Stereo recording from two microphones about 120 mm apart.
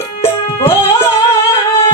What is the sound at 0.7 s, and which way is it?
Music, 20° left (ahead or behind).